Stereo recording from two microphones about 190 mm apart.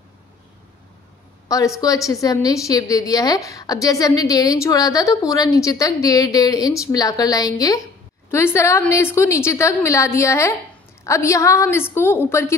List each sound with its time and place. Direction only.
1.5 s a woman's voice: 20° left (ahead or behind)